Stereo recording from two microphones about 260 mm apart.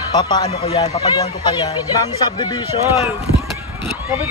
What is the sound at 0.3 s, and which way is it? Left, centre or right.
A man's voice, centre.